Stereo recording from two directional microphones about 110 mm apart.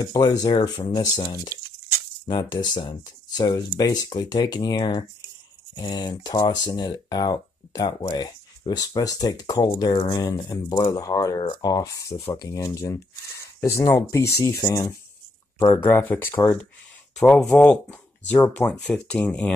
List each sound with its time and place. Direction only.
0.0 s speech: 35° left (ahead or behind)
1.5 s speech: 30° right (ahead or behind)
2.2 s speech: 40° left (ahead or behind); by 16.6 s 20° left (ahead or behind)
17.2 s speech: 10° left (ahead or behind)